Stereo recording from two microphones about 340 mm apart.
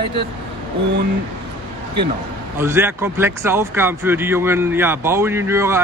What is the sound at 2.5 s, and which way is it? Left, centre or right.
Speech, centre.